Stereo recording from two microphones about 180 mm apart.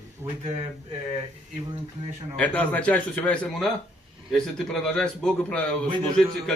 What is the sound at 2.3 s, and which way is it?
A man's voice, 10° left (ahead or behind).